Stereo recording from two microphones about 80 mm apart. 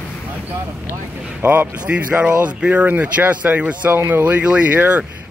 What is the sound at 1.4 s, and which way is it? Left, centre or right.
Speech, right.